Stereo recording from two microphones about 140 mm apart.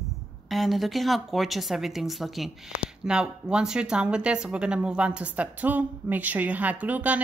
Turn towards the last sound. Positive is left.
turn(degrees=-10)  # may be behind; listen again after turning